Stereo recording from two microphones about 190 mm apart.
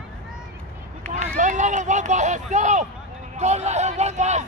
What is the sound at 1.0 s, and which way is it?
Run, 40° right (ahead or behind).